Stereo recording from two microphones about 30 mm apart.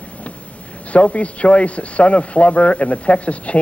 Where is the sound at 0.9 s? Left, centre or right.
Left.